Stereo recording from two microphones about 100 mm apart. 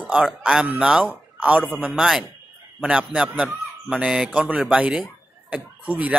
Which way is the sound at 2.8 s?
10° right (ahead or behind).